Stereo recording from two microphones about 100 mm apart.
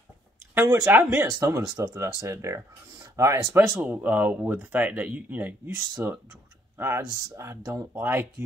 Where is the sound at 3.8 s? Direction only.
15° right (ahead or behind).